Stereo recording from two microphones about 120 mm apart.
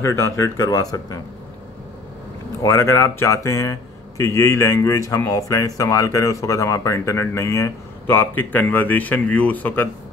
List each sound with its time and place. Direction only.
0.0 s speech: 25° left (ahead or behind)
2.6 s speech: 20° left (ahead or behind)